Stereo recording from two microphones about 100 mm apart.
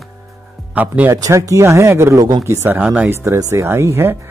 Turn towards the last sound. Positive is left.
turn(degrees=-25)  # may be behind; listen again after turning